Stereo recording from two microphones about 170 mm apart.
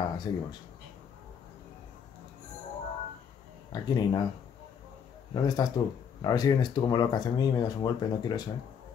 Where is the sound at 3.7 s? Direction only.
25° left (ahead or behind).